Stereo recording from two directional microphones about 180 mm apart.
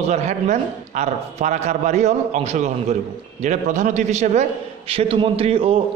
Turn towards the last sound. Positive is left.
turn(degrees=-30)  # may be behind; listen again after turning